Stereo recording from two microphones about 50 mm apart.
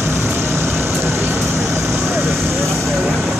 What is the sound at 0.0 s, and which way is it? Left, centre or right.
Vehicle, right.